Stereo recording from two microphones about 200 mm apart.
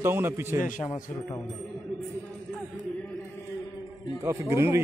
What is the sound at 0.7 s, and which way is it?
Speech, 40° left (ahead or behind).